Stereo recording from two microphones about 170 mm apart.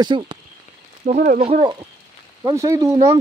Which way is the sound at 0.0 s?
25° right (ahead or behind).